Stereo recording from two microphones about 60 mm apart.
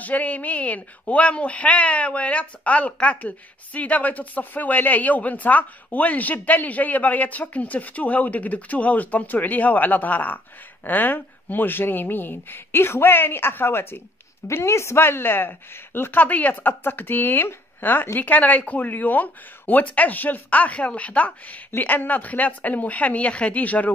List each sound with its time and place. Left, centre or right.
0.0 s speech: left
14.5 s speech: left